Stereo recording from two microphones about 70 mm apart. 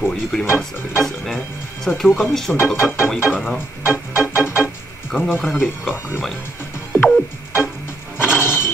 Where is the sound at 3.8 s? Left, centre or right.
Left.